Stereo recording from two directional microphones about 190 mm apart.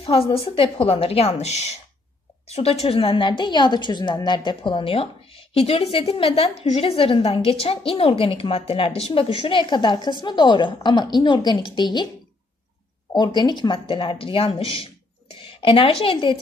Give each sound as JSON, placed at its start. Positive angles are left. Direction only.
{"t": 0.0, "sound": "a woman's voice", "side_deg": 30}
{"t": 13.1, "sound": "a woman's voice", "side_deg": 20}